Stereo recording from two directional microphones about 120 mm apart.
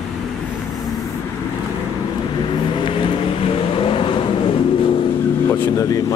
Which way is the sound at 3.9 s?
45° left (ahead or behind).